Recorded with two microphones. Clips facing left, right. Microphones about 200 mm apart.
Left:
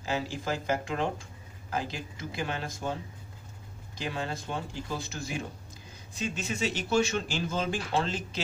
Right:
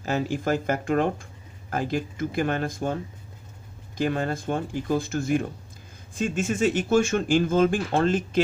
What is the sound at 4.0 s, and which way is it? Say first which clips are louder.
Speech: right 9 dB; 50° right (ahead or behind).